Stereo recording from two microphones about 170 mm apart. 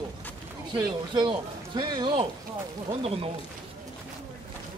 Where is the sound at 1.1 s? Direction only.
25° right (ahead or behind).